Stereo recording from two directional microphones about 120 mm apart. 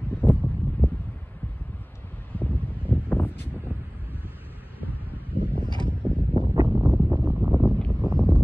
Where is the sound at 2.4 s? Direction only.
15° left (ahead or behind).